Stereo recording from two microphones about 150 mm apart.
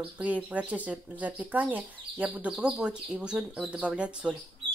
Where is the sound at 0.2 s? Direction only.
10° right (ahead or behind).